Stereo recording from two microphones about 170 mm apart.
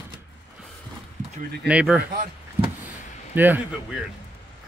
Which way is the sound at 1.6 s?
5° right (ahead or behind).